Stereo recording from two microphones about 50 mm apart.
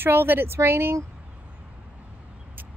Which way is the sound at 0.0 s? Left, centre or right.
Right.